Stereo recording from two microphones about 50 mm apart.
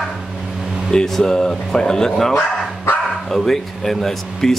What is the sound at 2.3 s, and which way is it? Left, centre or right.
Dog, left.